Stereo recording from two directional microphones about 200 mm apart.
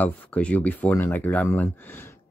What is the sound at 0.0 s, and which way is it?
Speech, 5° left (ahead or behind).